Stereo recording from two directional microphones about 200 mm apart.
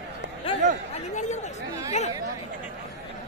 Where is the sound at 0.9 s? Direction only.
35° left (ahead or behind).